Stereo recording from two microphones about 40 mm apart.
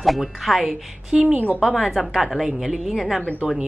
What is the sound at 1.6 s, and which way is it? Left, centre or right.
Speech, centre.